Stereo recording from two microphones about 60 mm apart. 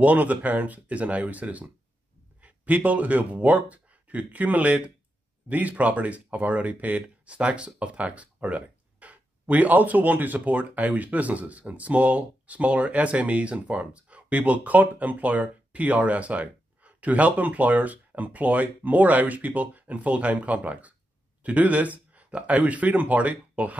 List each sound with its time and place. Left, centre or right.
0.0 s speech: right